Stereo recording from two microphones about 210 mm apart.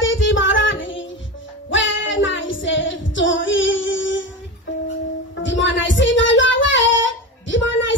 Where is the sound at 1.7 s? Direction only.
65° left (ahead or behind).